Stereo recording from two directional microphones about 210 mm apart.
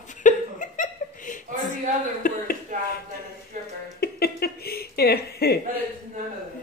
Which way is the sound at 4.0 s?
50° left (ahead or behind).